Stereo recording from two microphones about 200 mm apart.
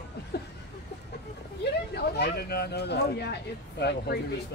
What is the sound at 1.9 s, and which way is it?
Speech, 55° left (ahead or behind).